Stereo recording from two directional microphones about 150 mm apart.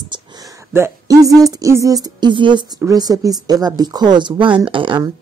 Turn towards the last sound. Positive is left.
turn(degrees=-35)  # may be behind; listen again after turning